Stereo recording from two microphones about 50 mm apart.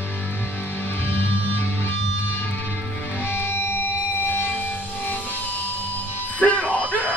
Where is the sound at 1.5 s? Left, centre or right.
Left.